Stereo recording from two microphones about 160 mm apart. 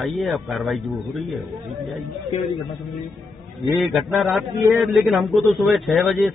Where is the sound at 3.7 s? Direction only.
Centre (ahead or behind).